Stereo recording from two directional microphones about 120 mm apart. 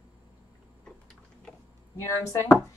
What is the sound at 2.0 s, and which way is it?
Speech, 20° left (ahead or behind).